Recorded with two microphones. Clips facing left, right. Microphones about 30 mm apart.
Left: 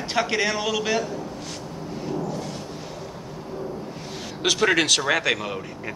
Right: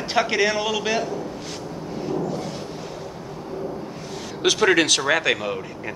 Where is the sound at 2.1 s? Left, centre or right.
Centre.